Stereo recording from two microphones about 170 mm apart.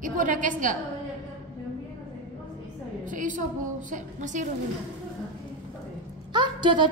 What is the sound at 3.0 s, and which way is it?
A woman's voice, 50° right (ahead or behind).